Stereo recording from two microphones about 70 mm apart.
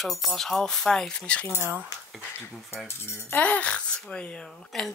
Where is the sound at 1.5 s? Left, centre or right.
Right.